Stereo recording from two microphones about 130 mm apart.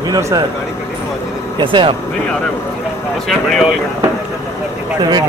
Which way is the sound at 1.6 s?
40° right (ahead or behind).